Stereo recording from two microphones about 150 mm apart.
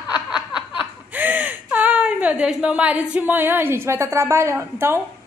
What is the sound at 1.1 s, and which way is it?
A woman's voice, 10° right (ahead or behind).